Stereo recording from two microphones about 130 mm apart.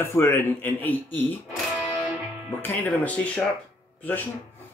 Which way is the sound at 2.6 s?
15° left (ahead or behind).